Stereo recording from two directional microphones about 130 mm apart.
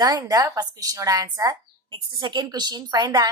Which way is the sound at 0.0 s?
25° right (ahead or behind).